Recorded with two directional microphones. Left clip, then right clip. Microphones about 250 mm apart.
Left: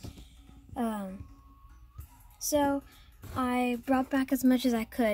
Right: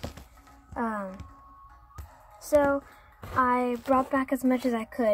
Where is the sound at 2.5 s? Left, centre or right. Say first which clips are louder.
Right 5 dB; centre.